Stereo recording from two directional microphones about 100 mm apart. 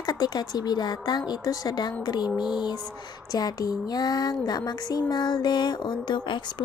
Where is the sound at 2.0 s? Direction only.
45° left (ahead or behind).